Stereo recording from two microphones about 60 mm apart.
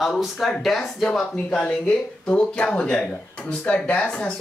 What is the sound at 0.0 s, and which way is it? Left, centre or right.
Speech, centre.